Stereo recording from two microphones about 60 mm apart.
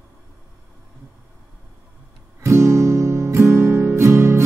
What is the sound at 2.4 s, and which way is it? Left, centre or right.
Music, right.